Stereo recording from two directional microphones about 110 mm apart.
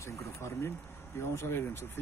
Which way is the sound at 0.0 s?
25° left (ahead or behind).